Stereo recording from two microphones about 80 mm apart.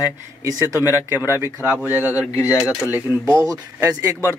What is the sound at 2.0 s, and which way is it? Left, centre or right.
Speech, left.